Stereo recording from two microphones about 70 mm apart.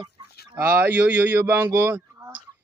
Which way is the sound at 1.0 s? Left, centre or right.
Right.